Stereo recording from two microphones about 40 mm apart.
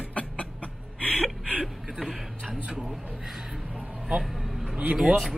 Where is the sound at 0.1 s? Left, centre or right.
Left.